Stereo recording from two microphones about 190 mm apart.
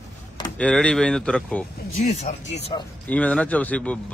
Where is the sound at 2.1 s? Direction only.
35° left (ahead or behind).